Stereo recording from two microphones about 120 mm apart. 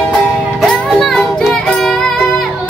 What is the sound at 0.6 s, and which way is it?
Music, centre (ahead or behind).